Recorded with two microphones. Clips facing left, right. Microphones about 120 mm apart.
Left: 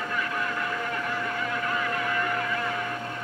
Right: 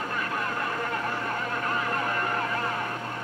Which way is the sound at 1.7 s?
40° right (ahead or behind).